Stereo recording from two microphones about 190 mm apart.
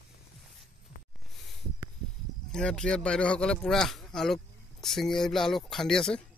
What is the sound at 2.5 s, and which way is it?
Speech, 5° left (ahead or behind).